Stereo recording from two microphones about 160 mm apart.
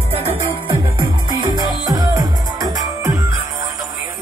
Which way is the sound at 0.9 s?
25° right (ahead or behind).